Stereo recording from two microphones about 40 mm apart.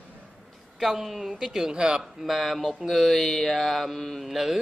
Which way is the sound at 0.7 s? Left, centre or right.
Centre.